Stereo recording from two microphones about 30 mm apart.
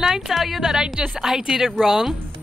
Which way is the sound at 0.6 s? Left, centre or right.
Centre.